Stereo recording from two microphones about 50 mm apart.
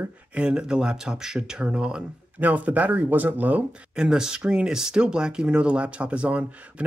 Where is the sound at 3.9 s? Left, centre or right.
Centre.